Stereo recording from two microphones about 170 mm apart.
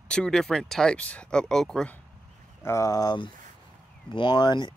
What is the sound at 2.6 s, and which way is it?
Speech, 15° left (ahead or behind).